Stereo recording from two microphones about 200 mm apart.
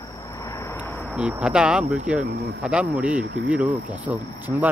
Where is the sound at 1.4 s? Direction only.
5° right (ahead or behind).